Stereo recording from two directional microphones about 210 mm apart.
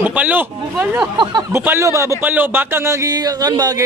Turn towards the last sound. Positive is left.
turn(degrees=-15)  # may be behind; listen again after turning